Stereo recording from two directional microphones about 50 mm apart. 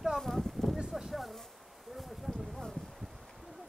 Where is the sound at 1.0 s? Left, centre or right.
Centre.